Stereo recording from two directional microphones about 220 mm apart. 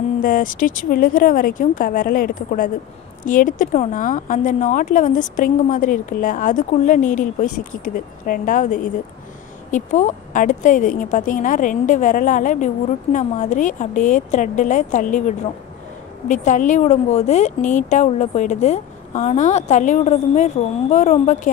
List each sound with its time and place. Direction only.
0.2 s speech: 40° left (ahead or behind)